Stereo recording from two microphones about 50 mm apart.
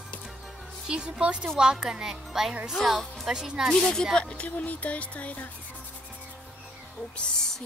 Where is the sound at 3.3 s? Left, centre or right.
Centre.